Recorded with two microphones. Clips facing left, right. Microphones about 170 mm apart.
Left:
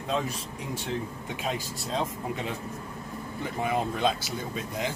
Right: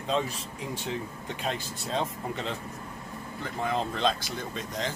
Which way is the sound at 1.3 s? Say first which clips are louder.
Even; 5° left (ahead or behind).